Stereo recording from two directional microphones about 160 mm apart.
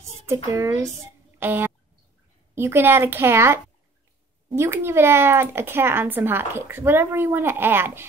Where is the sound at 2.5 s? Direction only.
15° right (ahead or behind).